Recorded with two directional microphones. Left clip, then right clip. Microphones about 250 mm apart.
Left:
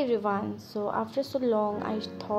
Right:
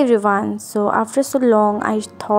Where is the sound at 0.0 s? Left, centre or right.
Right.